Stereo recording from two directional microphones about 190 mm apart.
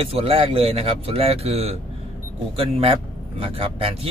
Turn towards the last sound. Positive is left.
turn(degrees=-30)  # may be behind; listen again after turning